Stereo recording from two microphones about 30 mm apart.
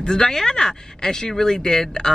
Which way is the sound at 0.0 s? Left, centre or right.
Left.